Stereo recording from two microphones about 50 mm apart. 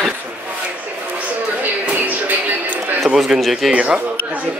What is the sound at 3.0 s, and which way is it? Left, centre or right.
Speech, centre.